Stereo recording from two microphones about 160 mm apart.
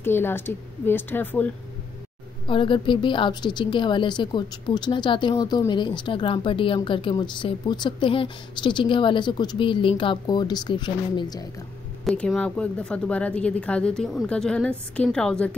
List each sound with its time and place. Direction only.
0.0 s speech: 15° left (ahead or behind)
2.4 s a woman's voice: 30° left (ahead or behind)
12.0 s speech: centre (ahead or behind)